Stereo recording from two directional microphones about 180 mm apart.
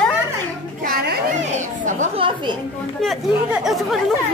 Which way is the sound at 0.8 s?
55° right (ahead or behind).